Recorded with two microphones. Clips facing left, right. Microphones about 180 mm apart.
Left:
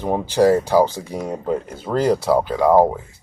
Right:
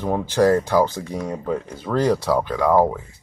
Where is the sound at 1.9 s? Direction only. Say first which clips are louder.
Left 2 dB; 10° left (ahead or behind).